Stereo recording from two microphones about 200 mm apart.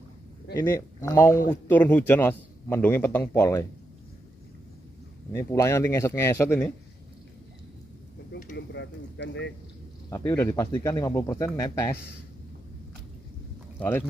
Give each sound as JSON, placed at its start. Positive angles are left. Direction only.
{"t": 0.6, "sound": "a man's voice", "side_deg": 15}
{"t": 5.3, "sound": "a man's voice", "side_deg": 15}
{"t": 8.5, "sound": "speech", "side_deg": 60}
{"t": 10.0, "sound": "a man's voice", "side_deg": 15}
{"t": 13.7, "sound": "speech", "side_deg": 10}